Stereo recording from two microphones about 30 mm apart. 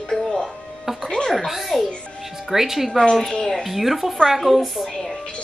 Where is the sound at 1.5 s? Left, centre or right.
Centre.